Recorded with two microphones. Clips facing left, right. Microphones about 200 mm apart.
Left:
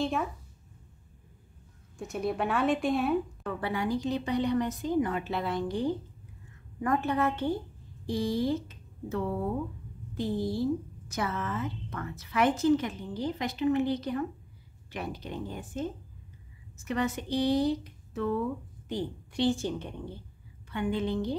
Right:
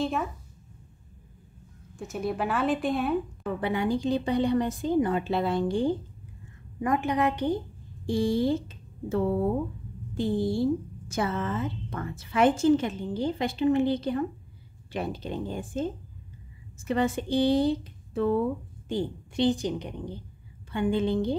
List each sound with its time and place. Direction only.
0.0 s speech: centre (ahead or behind)
2.0 s speech: centre (ahead or behind)
3.6 s speech: 25° right (ahead or behind)
6.8 s a woman's voice: 15° right (ahead or behind)
8.1 s a woman's voice: 25° right (ahead or behind)
20.7 s speech: 30° right (ahead or behind)